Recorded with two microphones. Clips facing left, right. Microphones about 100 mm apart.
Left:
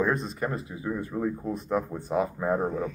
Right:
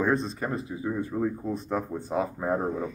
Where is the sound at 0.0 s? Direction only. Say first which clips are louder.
Right 1 dB; 30° right (ahead or behind).